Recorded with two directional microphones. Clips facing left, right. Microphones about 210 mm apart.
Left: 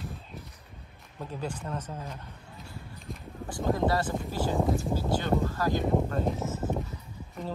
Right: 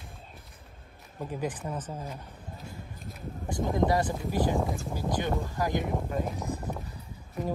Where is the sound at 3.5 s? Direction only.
20° right (ahead or behind).